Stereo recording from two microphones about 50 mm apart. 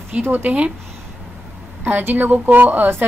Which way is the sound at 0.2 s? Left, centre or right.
Right.